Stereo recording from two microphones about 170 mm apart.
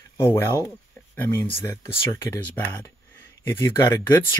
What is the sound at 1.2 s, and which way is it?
Speech, 10° left (ahead or behind).